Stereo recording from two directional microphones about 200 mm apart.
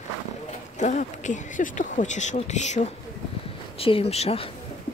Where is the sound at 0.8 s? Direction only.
40° left (ahead or behind).